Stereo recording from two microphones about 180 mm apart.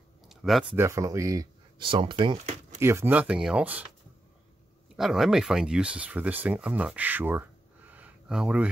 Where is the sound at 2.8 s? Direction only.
15° right (ahead or behind).